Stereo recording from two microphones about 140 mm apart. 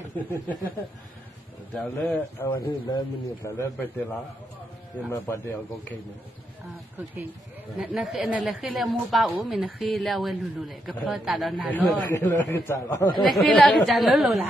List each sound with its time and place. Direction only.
0.2 s speech: 10° left (ahead or behind)
2.0 s speech: 10° left (ahead or behind)
2.8 s a man's voice: 25° left (ahead or behind)
5.1 s speech: 15° left (ahead or behind)
7.9 s a woman's voice: 5° right (ahead or behind)
11.7 s speech: 15° left (ahead or behind)
13.3 s a woman's voice: centre (ahead or behind)